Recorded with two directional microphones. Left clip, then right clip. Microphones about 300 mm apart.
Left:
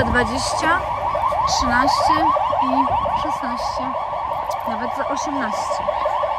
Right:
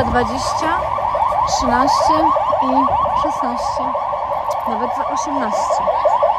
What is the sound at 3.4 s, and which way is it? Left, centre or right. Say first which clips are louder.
Speech: right 4 dB; centre.